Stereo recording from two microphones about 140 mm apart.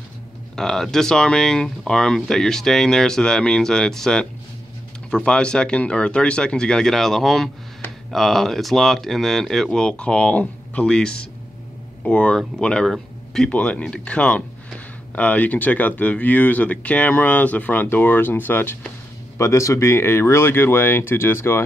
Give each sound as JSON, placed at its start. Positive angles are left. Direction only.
{"t": 0.6, "sound": "speech", "side_deg": 5}